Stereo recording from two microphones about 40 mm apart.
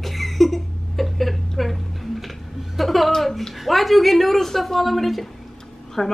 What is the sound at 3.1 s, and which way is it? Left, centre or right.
A woman's voice, centre.